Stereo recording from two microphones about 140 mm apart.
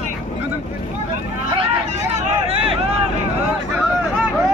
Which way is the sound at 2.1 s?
45° right (ahead or behind).